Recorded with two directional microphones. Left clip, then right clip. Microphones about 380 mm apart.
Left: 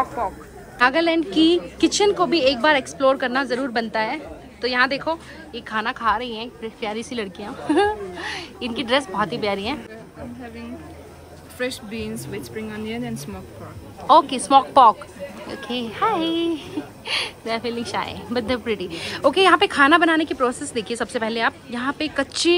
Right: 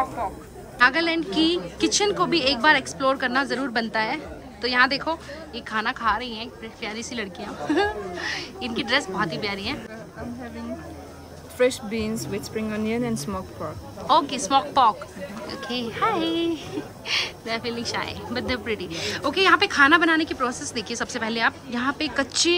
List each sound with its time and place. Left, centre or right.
0.0 s a woman's voice: centre
12.3 s speech: right
14.0 s a woman's voice: centre